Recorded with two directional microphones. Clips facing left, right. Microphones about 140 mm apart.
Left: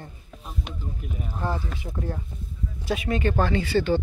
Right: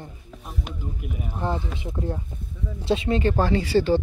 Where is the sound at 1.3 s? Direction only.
20° right (ahead or behind).